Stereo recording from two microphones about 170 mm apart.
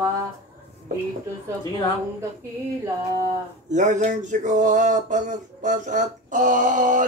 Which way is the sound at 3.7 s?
45° right (ahead or behind).